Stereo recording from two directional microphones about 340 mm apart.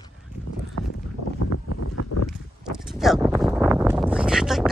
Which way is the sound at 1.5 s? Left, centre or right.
Left.